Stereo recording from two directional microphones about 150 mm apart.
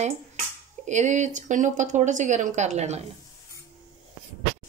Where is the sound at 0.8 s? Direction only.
50° right (ahead or behind).